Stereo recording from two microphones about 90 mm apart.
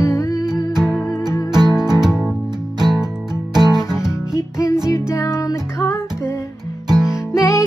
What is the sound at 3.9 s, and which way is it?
Music, 5° right (ahead or behind).